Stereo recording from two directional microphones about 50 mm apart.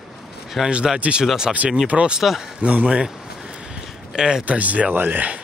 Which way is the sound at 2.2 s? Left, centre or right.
Centre.